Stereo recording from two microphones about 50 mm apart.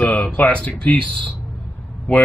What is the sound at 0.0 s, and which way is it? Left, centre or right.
A man's voice, left.